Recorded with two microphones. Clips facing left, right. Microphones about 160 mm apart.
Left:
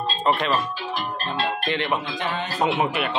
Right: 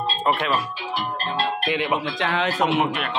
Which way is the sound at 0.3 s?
5° right (ahead or behind).